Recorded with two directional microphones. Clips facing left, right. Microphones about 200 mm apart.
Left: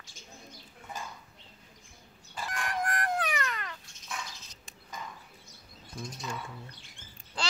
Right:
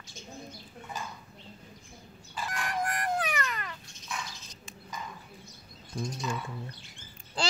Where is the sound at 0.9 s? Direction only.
50° left (ahead or behind).